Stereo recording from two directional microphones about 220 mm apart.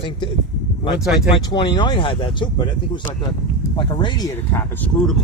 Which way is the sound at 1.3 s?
20° left (ahead or behind).